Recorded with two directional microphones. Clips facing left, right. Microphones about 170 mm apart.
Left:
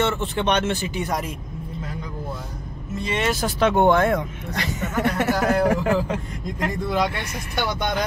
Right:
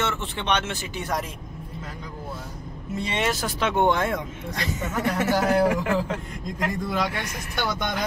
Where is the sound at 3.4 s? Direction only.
45° left (ahead or behind); by 5.7 s 65° left (ahead or behind).